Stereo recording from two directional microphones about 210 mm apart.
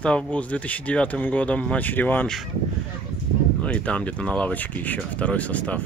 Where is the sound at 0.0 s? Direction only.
5° left (ahead or behind).